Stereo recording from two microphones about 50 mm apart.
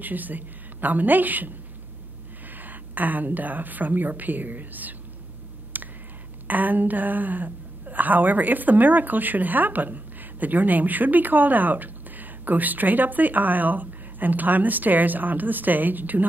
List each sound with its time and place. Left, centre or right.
0.0 s a woman's voice: right
2.5 s a woman's voice: right
5.7 s a sound: right
6.4 s a woman's voice: right